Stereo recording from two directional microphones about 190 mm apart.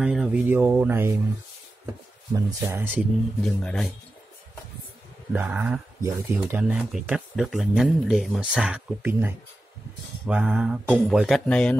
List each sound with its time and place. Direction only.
0.0 s speech: 5° right (ahead or behind)
2.3 s speech: 10° right (ahead or behind)
3.4 s speech: 5° left (ahead or behind)
5.3 s speech: 10° right (ahead or behind)